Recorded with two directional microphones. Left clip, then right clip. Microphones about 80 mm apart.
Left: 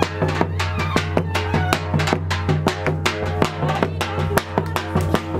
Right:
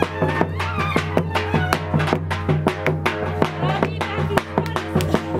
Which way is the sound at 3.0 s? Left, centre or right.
Left.